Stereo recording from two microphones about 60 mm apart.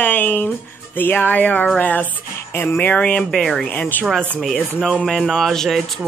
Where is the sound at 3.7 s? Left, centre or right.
Left.